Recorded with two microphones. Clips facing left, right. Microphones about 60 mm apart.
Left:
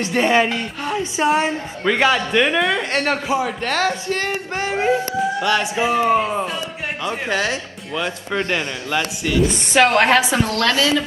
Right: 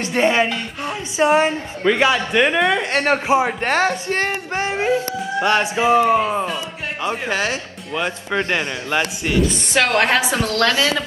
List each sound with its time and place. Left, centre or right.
0.0 s a man's voice: right
6.1 s speech: centre
7.0 s speech: right
10.0 s a woman's voice: left
10.6 s speech: right